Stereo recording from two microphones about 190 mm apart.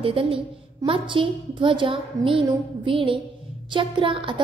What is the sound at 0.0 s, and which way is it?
A woman's voice, 30° right (ahead or behind).